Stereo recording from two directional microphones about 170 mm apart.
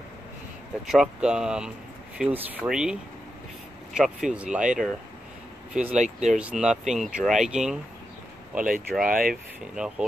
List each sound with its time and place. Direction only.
0.9 s speech: 5° right (ahead or behind)
5.9 s speech: 45° right (ahead or behind)
6.3 s speech: 5° right (ahead or behind)
8.9 s speech: 5° right (ahead or behind)